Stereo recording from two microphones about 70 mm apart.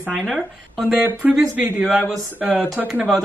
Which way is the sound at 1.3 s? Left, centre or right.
Centre.